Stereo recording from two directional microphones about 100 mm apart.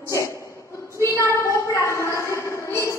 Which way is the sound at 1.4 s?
30° left (ahead or behind).